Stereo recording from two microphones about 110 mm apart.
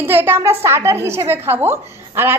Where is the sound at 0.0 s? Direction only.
20° right (ahead or behind).